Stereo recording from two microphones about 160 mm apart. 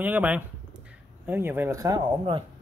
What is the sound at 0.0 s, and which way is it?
Speech, 10° right (ahead or behind).